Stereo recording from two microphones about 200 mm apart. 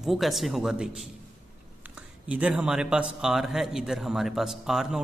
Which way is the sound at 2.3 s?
5° right (ahead or behind).